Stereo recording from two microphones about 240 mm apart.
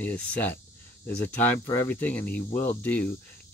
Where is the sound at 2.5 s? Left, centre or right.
Left.